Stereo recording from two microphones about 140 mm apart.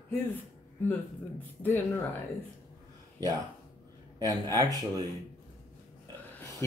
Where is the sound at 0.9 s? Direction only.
15° left (ahead or behind).